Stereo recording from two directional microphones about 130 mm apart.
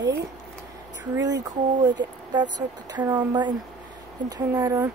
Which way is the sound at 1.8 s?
35° right (ahead or behind).